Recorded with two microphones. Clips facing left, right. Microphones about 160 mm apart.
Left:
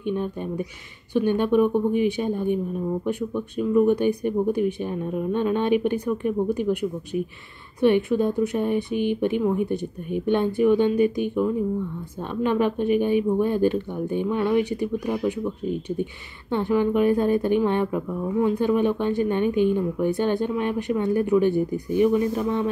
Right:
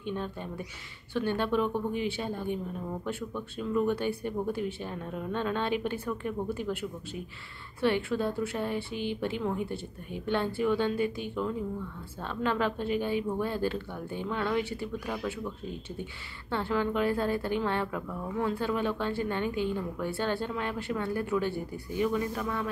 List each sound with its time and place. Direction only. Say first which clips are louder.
0.0 s a woman's voice: left 8 dB; 15° left (ahead or behind)